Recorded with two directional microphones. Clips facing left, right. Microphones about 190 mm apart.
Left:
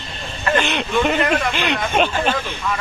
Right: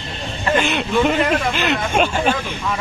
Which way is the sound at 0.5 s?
5° right (ahead or behind).